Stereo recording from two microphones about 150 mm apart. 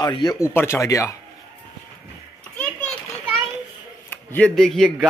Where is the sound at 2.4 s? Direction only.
5° left (ahead or behind).